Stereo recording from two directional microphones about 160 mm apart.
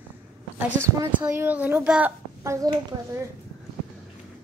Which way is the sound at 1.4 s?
10° right (ahead or behind).